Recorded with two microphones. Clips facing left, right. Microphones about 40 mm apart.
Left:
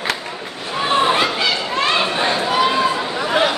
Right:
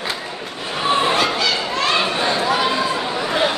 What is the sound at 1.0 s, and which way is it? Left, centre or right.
Chatter, centre.